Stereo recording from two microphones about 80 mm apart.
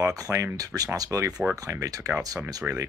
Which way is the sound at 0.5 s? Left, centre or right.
Right.